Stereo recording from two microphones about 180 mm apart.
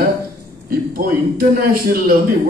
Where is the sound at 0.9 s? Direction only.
55° right (ahead or behind).